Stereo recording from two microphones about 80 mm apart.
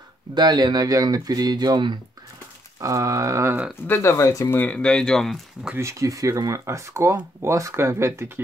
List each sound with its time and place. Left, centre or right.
0.3 s speech: right
2.8 s speech: right
4.0 s speech: left
4.6 s speech: centre
5.8 s speech: right